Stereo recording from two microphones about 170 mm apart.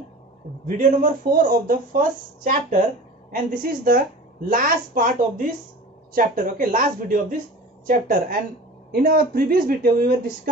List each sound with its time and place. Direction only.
0.7 s speech: 50° right (ahead or behind)